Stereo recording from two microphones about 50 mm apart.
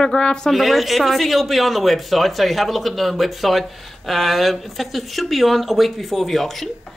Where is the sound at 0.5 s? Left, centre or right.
Centre.